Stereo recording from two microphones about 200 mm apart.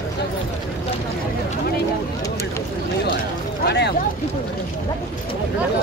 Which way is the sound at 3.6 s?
55° left (ahead or behind).